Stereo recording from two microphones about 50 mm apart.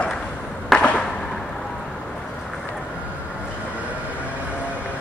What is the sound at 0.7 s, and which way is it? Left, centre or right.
Skateboard, centre.